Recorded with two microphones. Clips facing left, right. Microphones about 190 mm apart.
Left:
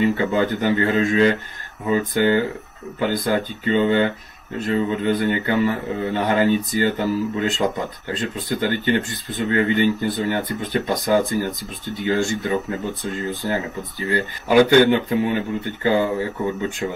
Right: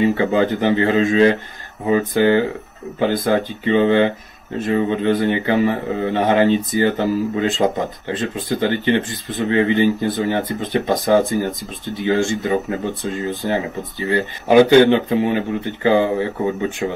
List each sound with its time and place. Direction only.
0.0 s speech: 25° right (ahead or behind)
13.9 s speech: 25° right (ahead or behind)